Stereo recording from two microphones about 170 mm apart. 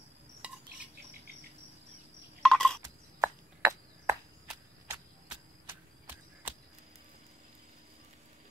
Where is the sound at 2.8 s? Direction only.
15° right (ahead or behind).